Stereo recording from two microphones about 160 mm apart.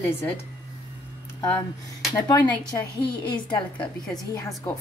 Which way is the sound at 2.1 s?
15° left (ahead or behind).